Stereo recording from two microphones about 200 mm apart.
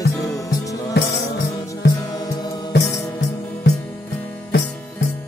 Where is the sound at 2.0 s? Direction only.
20° left (ahead or behind).